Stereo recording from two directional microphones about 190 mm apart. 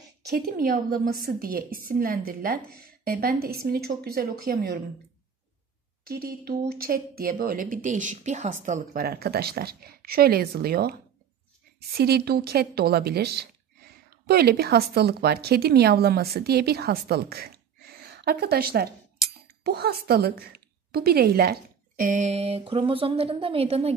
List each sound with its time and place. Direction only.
0.3 s speech: 50° right (ahead or behind)
6.0 s speech: 50° right (ahead or behind)
12.0 s speech: 55° right (ahead or behind); by 23.9 s 30° right (ahead or behind)